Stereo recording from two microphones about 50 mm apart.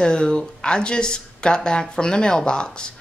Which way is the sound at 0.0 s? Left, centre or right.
Centre.